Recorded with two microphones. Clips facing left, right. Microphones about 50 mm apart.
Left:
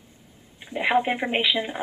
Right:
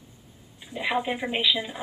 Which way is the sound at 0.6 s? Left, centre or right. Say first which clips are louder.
Left 5 dB; left.